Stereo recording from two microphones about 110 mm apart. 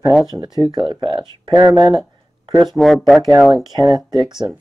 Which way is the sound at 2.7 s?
Centre (ahead or behind).